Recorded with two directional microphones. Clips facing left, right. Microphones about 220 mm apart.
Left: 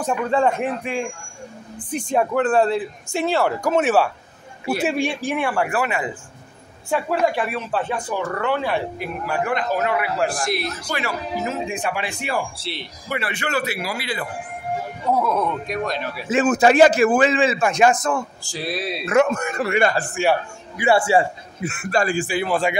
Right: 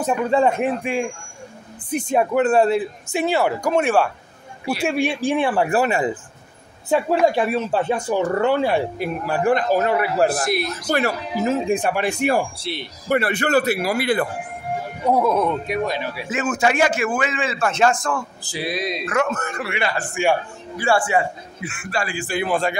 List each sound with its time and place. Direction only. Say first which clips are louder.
0.0 s speech: right 2 dB; 10° right (ahead or behind)
5.0 s speech: right 3 dB; 20° right (ahead or behind)
10.4 s speech: right 2 dB; centre (ahead or behind)
11.0 s speech: right 4 dB; 40° right (ahead or behind)
11.7 s speech: right 6 dB; 55° right (ahead or behind)
15.0 s speech: right 3 dB; 15° right (ahead or behind)
16.3 s a man's voice: left 5 dB; 35° left (ahead or behind)
17.6 s a man's voice: left 2 dB; 15° left (ahead or behind)
18.5 s speech: right 2 dB; centre (ahead or behind)
19.0 s a man's voice: left 6 dB; 25° left (ahead or behind)
19.6 s a man's voice: left 7 dB; 45° left (ahead or behind)
20.7 s a man's voice: left 2 dB; 20° left (ahead or behind); by 22.2 s 40° left (ahead or behind)
22.3 s speech: even; 5° left (ahead or behind)